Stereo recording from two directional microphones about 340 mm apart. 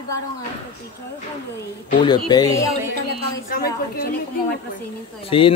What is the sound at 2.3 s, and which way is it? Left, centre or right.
Speech, centre.